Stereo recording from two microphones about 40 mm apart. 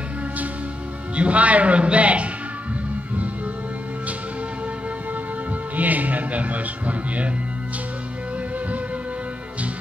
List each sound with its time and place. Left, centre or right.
1.1 s speech: right
5.8 s music: right